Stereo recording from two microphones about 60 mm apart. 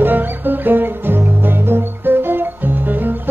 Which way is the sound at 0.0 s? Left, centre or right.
Right.